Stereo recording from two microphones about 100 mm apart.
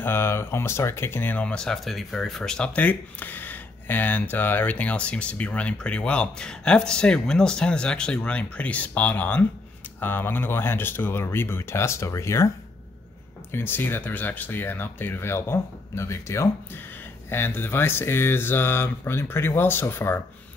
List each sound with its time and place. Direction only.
0.0 s speech: 25° left (ahead or behind)
13.5 s speech: 20° left (ahead or behind)